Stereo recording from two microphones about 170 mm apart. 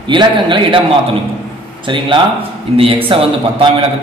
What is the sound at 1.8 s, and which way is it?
Speech, 30° right (ahead or behind).